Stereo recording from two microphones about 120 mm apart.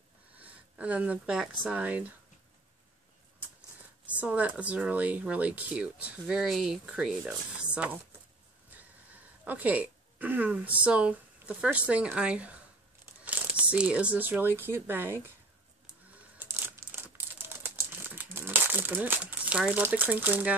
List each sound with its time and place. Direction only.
0.4 s speech: 10° right (ahead or behind)
4.1 s speech: 10° right (ahead or behind)
9.4 s speech: 15° right (ahead or behind)
15.9 s crumpling: 15° right (ahead or behind)
19.8 s speech: 15° right (ahead or behind)